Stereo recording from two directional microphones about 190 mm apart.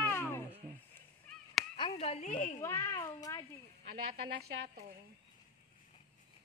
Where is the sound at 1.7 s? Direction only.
30° left (ahead or behind).